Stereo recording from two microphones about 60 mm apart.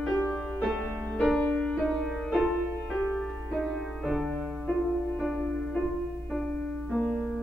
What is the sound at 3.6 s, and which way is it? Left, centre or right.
Music, centre.